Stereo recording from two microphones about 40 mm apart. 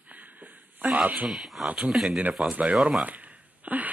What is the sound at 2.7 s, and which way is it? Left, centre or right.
Speech, centre.